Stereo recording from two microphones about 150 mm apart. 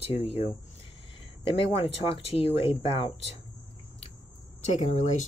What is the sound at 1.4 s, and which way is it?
Speech, 40° left (ahead or behind).